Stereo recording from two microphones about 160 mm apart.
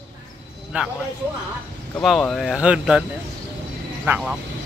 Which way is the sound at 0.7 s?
10° right (ahead or behind).